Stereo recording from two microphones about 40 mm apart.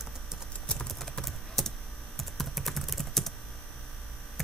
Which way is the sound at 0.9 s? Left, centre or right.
Centre.